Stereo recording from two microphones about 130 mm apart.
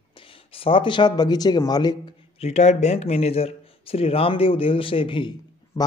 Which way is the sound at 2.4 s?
60° left (ahead or behind).